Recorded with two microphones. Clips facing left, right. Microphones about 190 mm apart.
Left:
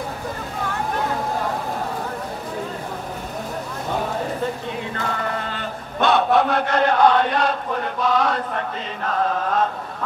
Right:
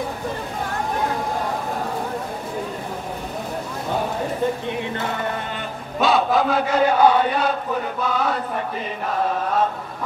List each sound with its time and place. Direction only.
5.9 s chant: centre (ahead or behind)